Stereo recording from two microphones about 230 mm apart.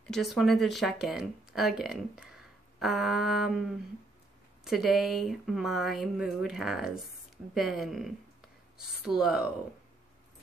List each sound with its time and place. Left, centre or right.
0.0 s speech: centre
4.6 s speech: centre